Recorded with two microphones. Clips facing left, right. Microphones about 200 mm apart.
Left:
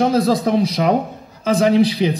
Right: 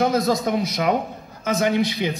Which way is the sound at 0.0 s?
30° left (ahead or behind).